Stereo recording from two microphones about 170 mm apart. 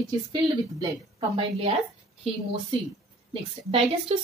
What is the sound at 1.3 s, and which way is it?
Speech, 35° right (ahead or behind).